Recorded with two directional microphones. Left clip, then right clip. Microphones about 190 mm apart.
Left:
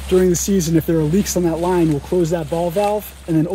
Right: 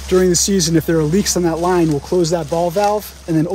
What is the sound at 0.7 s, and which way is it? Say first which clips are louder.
Speech: left 1 dB; 15° right (ahead or behind).